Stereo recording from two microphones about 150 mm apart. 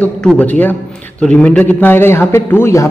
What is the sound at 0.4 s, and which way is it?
A man's voice, 10° left (ahead or behind).